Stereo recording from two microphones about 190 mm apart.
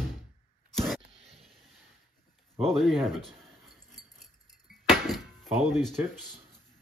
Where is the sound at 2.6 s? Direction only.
Centre (ahead or behind).